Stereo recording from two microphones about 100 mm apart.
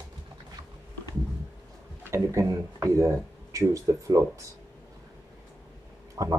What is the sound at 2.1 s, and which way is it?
Speech, 30° right (ahead or behind).